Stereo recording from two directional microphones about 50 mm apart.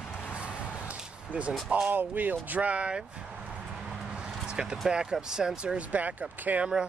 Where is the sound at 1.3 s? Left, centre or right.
Right.